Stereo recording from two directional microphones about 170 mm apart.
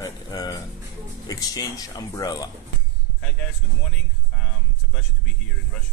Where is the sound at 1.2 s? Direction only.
25° left (ahead or behind).